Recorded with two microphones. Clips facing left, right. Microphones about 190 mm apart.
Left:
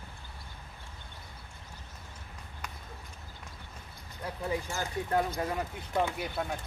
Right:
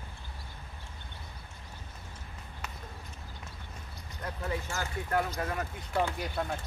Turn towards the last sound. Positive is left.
turn(degrees=5)  # may be behind; listen again after turning